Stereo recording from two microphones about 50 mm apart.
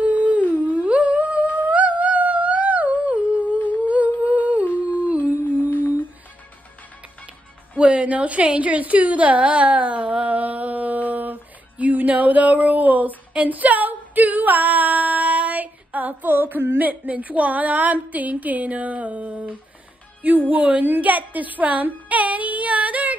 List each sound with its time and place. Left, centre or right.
0.0 s humming: right
5.7 s music: left
7.7 s a woman's voice: right
11.8 s a sound: right
13.3 s female singing: right
20.2 s a woman's voice: right